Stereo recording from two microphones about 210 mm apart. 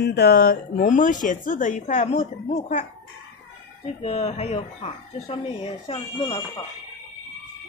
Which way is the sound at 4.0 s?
30° left (ahead or behind).